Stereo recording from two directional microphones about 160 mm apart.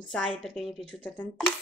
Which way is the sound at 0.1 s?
Centre (ahead or behind).